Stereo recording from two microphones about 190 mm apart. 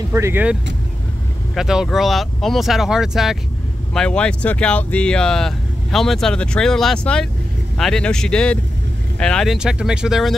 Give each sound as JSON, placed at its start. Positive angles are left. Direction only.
{"t": 0.1, "sound": "speech", "side_deg": -10}